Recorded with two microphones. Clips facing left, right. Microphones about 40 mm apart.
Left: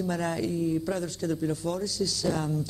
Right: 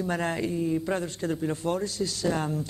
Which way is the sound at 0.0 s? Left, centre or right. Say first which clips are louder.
Right 1 dB; right.